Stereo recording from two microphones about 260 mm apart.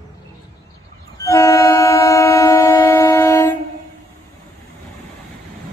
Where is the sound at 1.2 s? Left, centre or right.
Centre.